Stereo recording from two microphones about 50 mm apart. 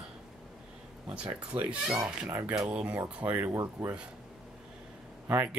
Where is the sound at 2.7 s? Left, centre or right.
Right.